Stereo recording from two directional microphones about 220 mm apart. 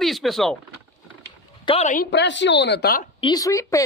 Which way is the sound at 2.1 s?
55° left (ahead or behind).